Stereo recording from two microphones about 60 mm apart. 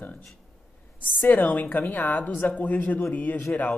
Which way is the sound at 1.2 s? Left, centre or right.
Left.